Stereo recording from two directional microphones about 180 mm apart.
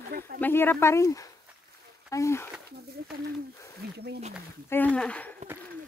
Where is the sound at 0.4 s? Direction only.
10° left (ahead or behind).